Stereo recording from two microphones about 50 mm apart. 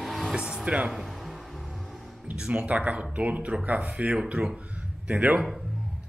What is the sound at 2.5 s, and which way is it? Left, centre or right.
Speech, right.